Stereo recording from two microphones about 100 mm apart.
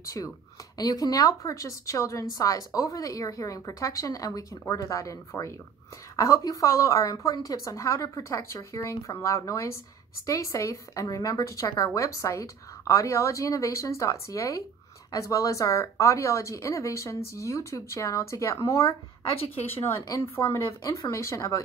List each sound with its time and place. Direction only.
0.0 s a woman's voice: 35° left (ahead or behind)
20.1 s a woman's voice: 30° left (ahead or behind)